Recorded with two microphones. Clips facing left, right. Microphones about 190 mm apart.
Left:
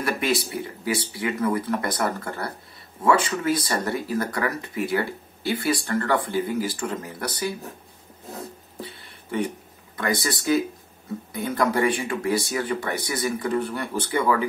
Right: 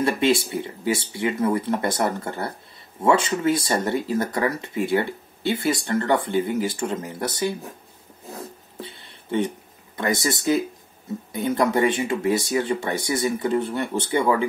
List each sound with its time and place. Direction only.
0.0 s speech: 25° right (ahead or behind)
8.8 s a sound: 25° right (ahead or behind)
9.9 s speech: 20° right (ahead or behind)